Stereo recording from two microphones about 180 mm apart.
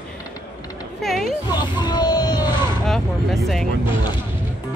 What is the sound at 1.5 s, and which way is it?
Music, 25° left (ahead or behind).